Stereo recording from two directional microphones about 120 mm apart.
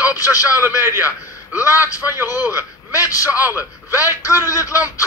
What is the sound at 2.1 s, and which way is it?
Speech, 20° right (ahead or behind).